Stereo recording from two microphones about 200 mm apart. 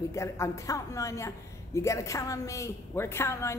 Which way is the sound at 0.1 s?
15° left (ahead or behind).